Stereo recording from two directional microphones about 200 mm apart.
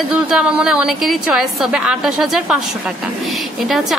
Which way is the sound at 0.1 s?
5° right (ahead or behind).